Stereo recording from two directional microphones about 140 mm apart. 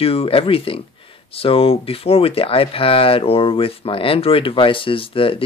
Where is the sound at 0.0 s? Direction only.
45° left (ahead or behind).